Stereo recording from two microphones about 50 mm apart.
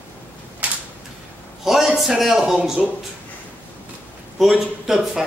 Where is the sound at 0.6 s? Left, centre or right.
Right.